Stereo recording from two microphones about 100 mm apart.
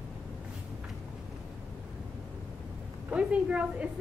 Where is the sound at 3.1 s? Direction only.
10° right (ahead or behind).